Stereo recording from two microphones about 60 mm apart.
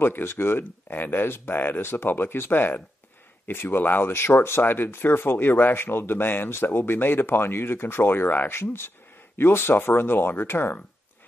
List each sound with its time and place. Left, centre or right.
0.0 s speech: left